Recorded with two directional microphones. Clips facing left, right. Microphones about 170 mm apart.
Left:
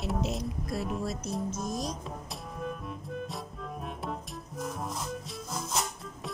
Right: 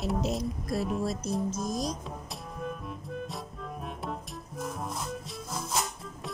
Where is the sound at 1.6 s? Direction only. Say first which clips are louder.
Right 2 dB; 5° left (ahead or behind).